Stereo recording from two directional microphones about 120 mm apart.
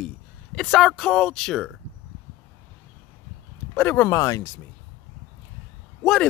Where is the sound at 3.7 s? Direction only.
15° left (ahead or behind).